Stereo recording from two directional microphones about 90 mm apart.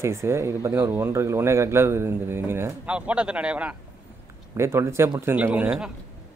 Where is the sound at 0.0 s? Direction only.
30° right (ahead or behind).